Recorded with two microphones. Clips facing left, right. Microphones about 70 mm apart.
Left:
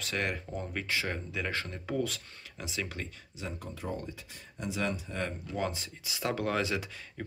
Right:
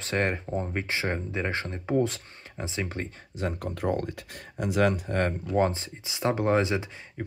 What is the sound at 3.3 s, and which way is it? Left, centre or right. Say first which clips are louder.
Speech: right 9 dB; right.